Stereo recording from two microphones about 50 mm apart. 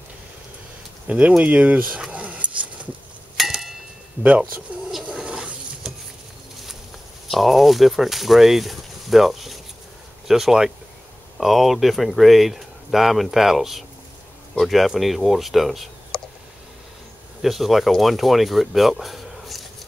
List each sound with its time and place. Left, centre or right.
1.0 s speech: right
2.0 s dog: right
3.3 s a sound: centre
4.2 s speech: right
4.7 s a sound: right
7.2 s speech: centre
17.4 s speech: centre